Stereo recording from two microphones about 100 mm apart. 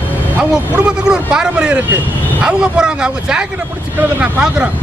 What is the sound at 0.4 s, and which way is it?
Speech, 10° right (ahead or behind).